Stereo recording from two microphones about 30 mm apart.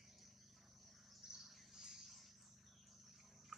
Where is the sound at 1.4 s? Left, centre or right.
Centre.